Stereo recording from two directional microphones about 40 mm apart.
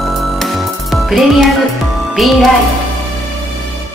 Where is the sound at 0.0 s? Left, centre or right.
Centre.